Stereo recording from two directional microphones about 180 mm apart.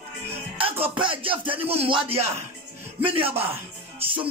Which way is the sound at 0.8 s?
30° right (ahead or behind).